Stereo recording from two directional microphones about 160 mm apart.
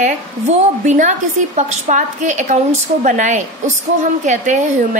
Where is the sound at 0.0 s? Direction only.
50° right (ahead or behind).